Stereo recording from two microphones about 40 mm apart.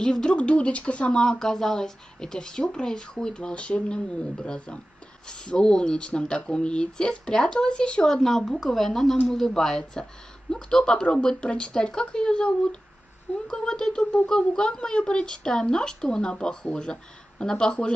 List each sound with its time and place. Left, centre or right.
0.0 s speech: left
1.4 s speech: centre
3.3 s speech: left
8.1 s speech: centre